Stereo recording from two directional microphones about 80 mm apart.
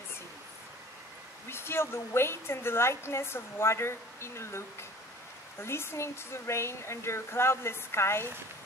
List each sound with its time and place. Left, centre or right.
1.5 s a woman's voice: left